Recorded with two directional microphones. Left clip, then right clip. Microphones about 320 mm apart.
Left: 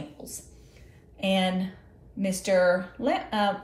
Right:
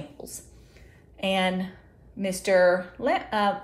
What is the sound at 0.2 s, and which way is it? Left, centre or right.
Whispering, centre.